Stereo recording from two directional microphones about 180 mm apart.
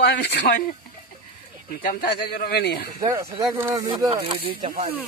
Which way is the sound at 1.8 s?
55° left (ahead or behind).